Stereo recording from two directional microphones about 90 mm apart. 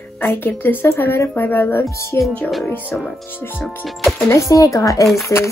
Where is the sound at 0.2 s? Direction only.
25° left (ahead or behind).